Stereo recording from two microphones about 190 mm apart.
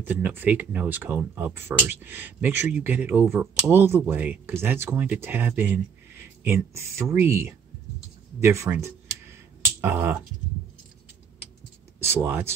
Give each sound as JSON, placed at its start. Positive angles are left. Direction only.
{"t": 0.0, "sound": "speech", "side_deg": -10}
{"t": 12.1, "sound": "speech", "side_deg": -10}